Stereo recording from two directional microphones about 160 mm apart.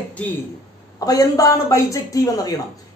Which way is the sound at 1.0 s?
20° left (ahead or behind).